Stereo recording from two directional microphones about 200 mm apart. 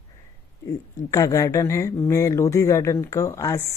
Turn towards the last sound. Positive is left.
turn(degrees=15)  # may be behind; listen again after turning